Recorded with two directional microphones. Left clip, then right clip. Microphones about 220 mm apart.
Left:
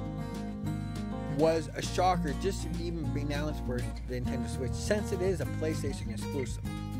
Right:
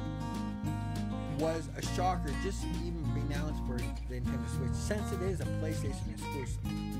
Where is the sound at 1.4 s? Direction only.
40° left (ahead or behind).